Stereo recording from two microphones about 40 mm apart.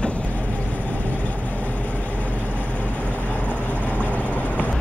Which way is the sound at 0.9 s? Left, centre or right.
Left.